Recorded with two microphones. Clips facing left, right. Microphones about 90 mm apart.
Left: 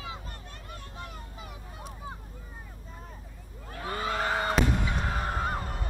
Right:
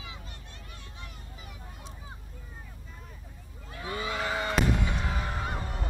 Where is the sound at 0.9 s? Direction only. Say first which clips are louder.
Left 5 dB; 45° left (ahead or behind).